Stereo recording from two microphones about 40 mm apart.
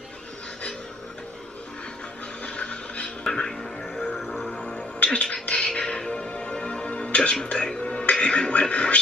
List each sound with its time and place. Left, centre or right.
2.4 s music: left
3.3 s music: centre
4.2 s music: centre
4.5 s music: left
7.4 s speech: left